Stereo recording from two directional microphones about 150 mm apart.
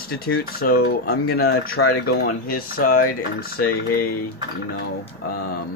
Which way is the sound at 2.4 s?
75° left (ahead or behind).